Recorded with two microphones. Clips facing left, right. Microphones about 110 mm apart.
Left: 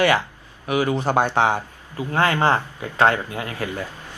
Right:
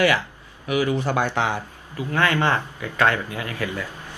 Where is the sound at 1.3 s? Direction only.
50° left (ahead or behind).